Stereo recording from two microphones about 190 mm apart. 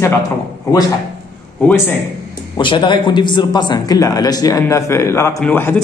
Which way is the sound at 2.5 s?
25° left (ahead or behind).